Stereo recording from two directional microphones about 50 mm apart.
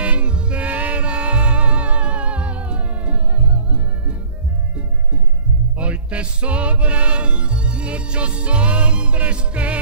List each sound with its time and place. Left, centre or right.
0.0 s music: right
5.8 s music: right